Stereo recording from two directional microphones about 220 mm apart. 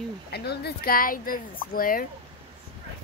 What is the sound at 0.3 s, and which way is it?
Speech, 45° left (ahead or behind).